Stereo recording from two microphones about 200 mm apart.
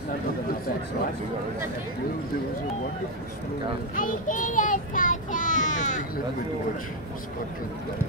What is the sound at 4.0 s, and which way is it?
Child singing, 40° left (ahead or behind).